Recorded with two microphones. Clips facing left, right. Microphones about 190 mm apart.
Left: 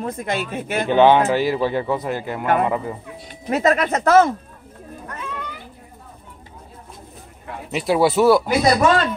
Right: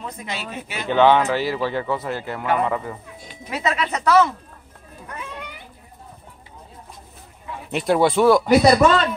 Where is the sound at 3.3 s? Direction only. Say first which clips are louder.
Left 7 dB; 50° left (ahead or behind).